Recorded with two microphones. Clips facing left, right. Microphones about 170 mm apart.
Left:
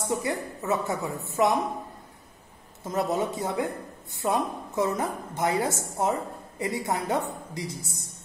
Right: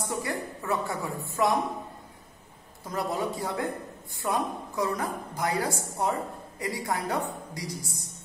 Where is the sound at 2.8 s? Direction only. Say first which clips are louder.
Left 3 dB; 25° left (ahead or behind).